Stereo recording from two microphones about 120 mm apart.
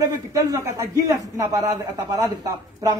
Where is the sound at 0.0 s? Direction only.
30° right (ahead or behind).